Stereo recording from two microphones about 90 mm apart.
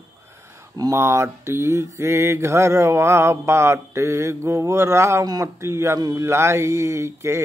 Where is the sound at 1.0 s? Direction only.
30° right (ahead or behind).